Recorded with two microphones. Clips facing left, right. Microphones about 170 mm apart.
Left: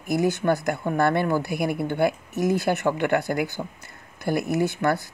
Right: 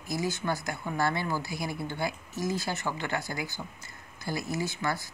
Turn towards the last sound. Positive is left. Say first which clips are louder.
# left 9 dB
turn(degrees=60)  # may be behind; listen again after turning